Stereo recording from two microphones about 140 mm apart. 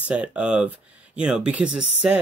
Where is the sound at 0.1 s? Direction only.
10° right (ahead or behind).